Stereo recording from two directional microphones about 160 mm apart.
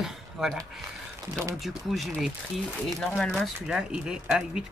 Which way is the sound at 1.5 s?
Centre (ahead or behind).